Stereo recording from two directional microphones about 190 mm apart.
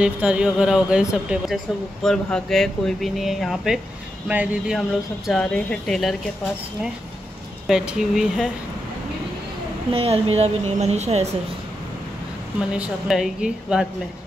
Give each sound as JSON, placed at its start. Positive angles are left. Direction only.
{"t": 0.0, "sound": "speech", "side_deg": -5}
{"t": 7.6, "sound": "speech", "side_deg": -5}
{"t": 9.9, "sound": "speech", "side_deg": -30}
{"t": 12.7, "sound": "speech", "side_deg": -5}